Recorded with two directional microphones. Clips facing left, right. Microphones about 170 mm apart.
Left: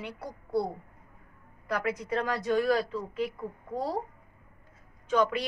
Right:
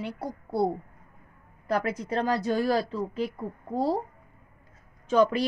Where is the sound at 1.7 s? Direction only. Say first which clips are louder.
Right 2 dB; 30° right (ahead or behind).